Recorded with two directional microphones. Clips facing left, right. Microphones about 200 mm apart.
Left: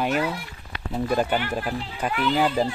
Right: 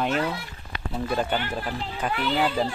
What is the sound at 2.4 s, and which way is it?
Speech, 40° left (ahead or behind).